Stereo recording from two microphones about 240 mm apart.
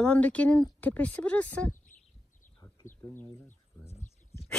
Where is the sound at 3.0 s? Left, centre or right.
Centre.